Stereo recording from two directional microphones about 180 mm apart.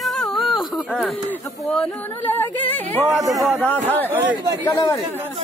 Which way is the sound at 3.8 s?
10° right (ahead or behind).